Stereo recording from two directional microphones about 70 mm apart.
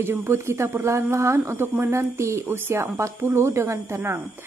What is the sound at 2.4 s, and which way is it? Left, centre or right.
A woman's voice, right.